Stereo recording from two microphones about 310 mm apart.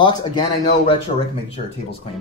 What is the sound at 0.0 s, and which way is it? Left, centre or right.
Speech, centre.